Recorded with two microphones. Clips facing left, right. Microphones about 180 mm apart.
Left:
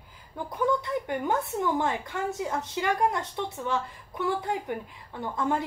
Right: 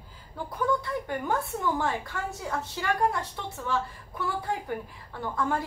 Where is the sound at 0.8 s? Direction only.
20° left (ahead or behind).